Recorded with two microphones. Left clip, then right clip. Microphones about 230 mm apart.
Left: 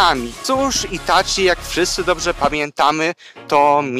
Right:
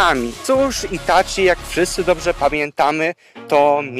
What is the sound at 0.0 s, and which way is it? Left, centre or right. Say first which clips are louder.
Speech: left 1 dB; centre.